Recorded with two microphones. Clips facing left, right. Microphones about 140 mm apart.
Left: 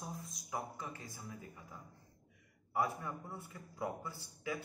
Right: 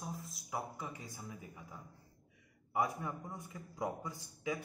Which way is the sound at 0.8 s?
15° right (ahead or behind).